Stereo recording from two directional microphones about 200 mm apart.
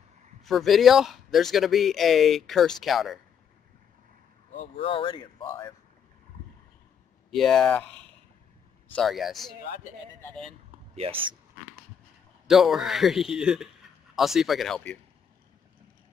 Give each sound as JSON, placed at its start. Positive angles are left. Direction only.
{"t": 0.5, "sound": "speech", "side_deg": 0}
{"t": 4.6, "sound": "speech", "side_deg": 25}
{"t": 7.2, "sound": "speech", "side_deg": 0}
{"t": 11.0, "sound": "speech", "side_deg": -25}
{"t": 12.4, "sound": "speech", "side_deg": 0}